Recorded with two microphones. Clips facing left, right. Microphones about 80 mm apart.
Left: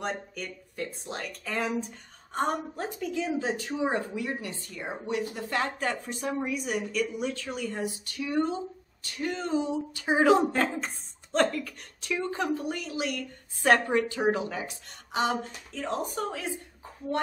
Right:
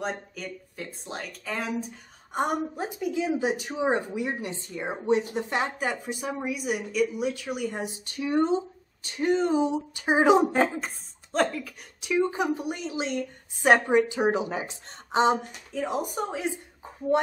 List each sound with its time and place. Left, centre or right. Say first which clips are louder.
0.0 s a woman's voice: right 1 dB; centre
11.3 s a woman's voice: even; centre; by 15.3 s right
15.4 s speech: right 4 dB; centre